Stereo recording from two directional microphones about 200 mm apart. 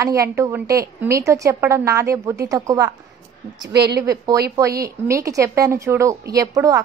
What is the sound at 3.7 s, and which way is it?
Speech, 55° right (ahead or behind).